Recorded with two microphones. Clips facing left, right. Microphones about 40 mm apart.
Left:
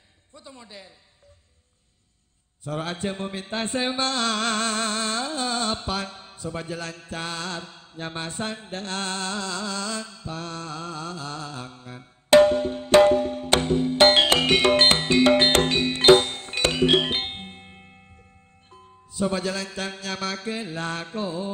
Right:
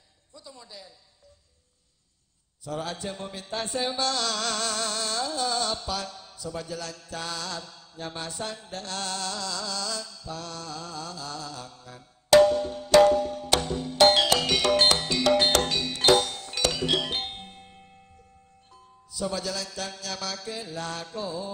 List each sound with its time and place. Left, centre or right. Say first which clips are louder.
0.3 s a man's voice: left 2 dB; left
2.6 s mantra: left 4 dB; left
18.7 s music: left 3 dB; left